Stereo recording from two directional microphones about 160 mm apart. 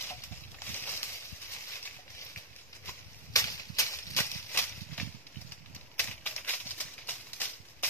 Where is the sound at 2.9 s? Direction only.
20° left (ahead or behind).